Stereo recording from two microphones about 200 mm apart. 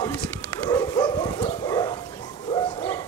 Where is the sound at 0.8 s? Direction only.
20° left (ahead or behind).